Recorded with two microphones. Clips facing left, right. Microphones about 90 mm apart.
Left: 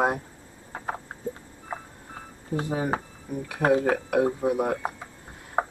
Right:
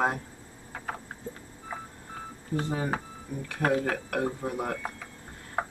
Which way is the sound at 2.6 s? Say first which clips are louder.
Left 3 dB; 15° left (ahead or behind).